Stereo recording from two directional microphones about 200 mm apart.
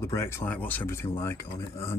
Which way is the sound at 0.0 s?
15° left (ahead or behind).